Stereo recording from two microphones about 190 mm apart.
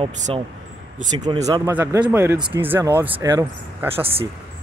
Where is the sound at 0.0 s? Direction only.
30° right (ahead or behind).